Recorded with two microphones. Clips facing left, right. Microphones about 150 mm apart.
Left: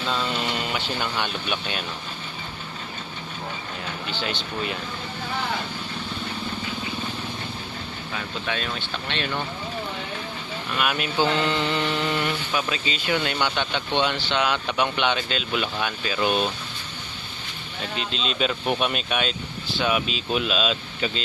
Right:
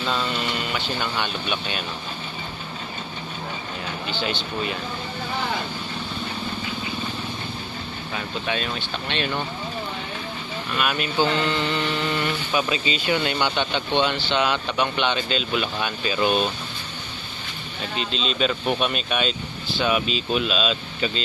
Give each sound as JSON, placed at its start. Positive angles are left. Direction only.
{"t": 1.1, "sound": "speech", "side_deg": 0}
{"t": 9.1, "sound": "speech", "side_deg": -10}
{"t": 10.8, "sound": "speech", "side_deg": 5}
{"t": 11.4, "sound": "mantra", "side_deg": 15}
{"t": 12.5, "sound": "speech", "side_deg": -10}
{"t": 17.9, "sound": "speech", "side_deg": 5}